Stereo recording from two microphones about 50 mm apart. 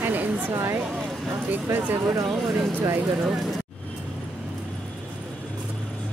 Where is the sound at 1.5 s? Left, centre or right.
Right.